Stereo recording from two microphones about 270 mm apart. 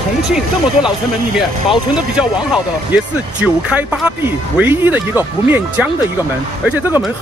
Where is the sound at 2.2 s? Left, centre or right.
Centre.